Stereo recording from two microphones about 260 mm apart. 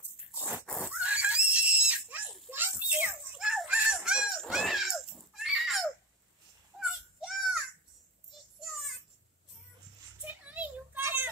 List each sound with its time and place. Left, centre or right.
0.3 s pig: centre
6.8 s children playing: centre
8.5 s child singing: centre
10.2 s a sound: centre